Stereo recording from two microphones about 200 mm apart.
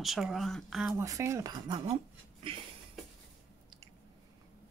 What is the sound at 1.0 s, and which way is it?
Speech, 15° right (ahead or behind).